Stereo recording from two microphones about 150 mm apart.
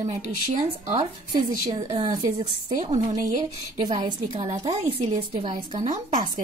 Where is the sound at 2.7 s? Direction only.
55° right (ahead or behind).